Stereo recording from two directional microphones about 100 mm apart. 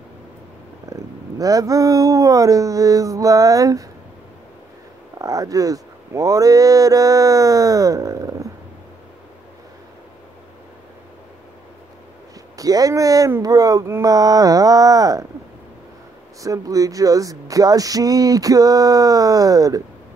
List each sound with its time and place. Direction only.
0.8 s speech: 35° right (ahead or behind)
5.2 s speech: 35° right (ahead or behind)
12.5 s speech: 35° right (ahead or behind)
16.4 s speech: 35° right (ahead or behind)